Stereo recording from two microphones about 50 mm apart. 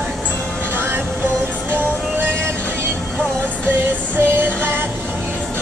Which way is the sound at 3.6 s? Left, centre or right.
Right.